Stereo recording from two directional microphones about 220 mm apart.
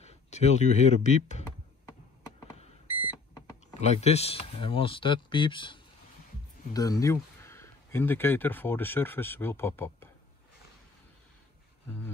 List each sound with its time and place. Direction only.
0.0 s speech: 30° left (ahead or behind)
3.8 s speech: 30° left (ahead or behind); by 10.0 s 10° left (ahead or behind)